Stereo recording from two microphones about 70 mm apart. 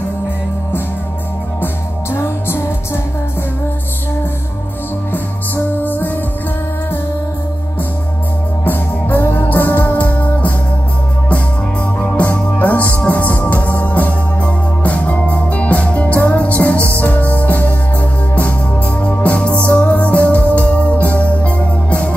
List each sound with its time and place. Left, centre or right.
1.6 s music: left
5.9 s music: left
8.6 s music: left
12.0 s music: left
19.0 s music: left